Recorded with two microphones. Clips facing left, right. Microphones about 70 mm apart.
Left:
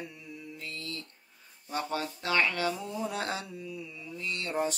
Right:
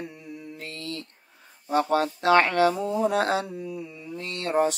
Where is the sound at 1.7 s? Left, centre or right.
Right.